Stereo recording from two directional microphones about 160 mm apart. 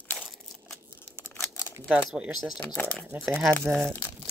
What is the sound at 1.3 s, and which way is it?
Crumpling, 15° left (ahead or behind).